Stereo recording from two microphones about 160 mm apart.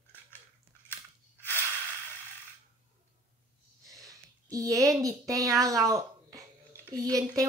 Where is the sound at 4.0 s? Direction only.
20° right (ahead or behind).